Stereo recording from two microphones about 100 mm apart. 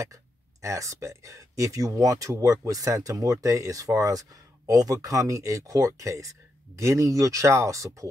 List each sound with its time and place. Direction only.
0.0 s speech: 30° right (ahead or behind)